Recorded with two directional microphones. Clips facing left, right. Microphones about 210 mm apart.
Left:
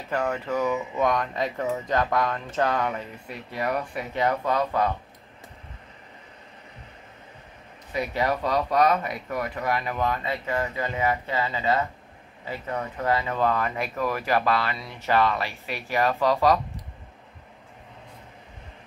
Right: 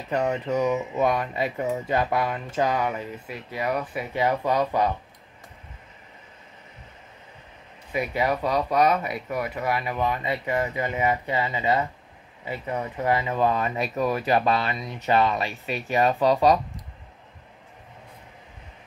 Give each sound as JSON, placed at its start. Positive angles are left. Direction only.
{"t": 0.1, "sound": "speech", "side_deg": -20}
{"t": 7.9, "sound": "speech", "side_deg": -10}